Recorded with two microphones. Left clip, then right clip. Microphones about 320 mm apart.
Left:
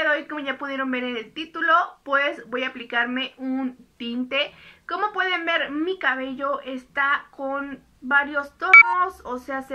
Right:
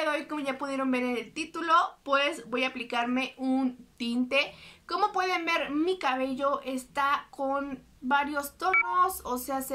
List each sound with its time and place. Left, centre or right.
0.0 s speech: centre